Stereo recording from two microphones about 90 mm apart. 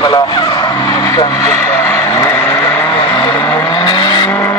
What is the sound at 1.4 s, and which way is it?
Vehicle, 25° left (ahead or behind).